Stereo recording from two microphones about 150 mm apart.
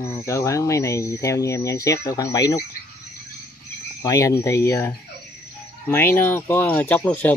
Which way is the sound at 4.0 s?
20° left (ahead or behind).